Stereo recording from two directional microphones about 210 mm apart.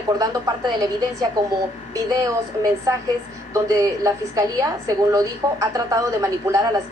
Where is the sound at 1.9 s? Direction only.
15° right (ahead or behind).